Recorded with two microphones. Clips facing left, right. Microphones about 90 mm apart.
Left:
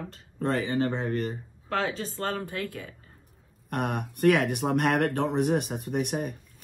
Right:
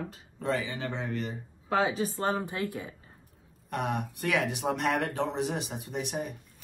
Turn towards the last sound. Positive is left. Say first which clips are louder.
# left 5 dB
turn(degrees=55)  # may be behind; listen again after turning